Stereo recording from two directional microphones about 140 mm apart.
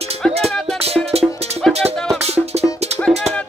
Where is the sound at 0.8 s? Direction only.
45° right (ahead or behind).